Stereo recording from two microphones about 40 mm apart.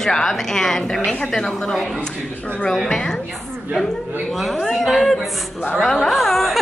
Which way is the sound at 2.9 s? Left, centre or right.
Centre.